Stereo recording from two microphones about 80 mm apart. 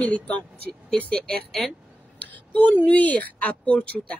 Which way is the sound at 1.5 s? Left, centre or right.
Centre.